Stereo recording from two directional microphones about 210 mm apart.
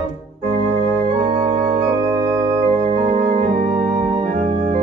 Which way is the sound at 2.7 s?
35° right (ahead or behind).